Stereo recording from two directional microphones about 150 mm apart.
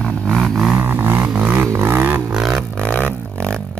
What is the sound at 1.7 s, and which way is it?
Roaring cats, 15° right (ahead or behind).